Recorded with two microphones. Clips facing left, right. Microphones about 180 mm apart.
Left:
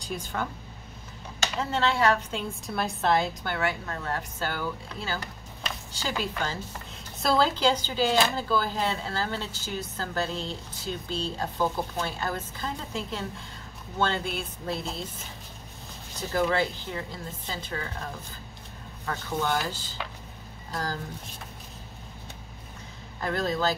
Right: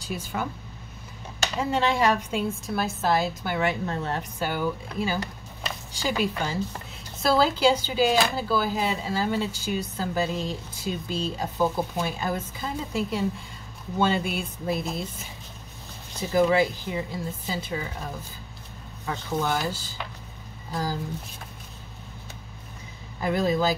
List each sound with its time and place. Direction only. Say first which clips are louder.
0.1 s speech: right 1 dB; 10° right (ahead or behind)
1.6 s speech: right 2 dB; 15° right (ahead or behind)
2.5 s speech: right 2 dB; centre (ahead or behind)
3.5 s a woman's voice: right 5 dB; 20° right (ahead or behind)
4.4 s speech: right 4 dB; 15° right (ahead or behind)
16.2 s speech: right 5 dB; 10° right (ahead or behind)
23.2 s speech: right 4 dB; 10° right (ahead or behind)